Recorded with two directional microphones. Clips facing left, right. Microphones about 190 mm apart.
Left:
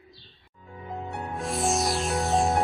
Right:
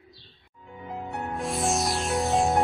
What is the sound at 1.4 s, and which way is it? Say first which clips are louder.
Music: left 1 dB; centre (ahead or behind).